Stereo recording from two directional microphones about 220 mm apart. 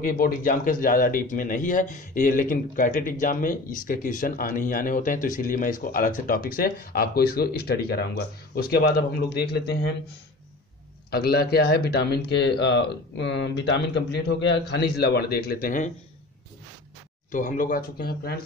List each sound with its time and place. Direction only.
0.0 s speech: 40° left (ahead or behind)
11.1 s speech: 45° left (ahead or behind)
17.3 s speech: 35° left (ahead or behind)